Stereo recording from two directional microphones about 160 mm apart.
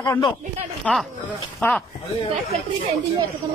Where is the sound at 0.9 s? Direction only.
5° left (ahead or behind).